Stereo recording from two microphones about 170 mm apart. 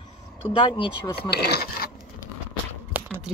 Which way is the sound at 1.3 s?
70° left (ahead or behind).